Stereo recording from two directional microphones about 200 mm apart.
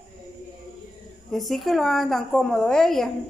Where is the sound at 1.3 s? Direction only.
Centre (ahead or behind).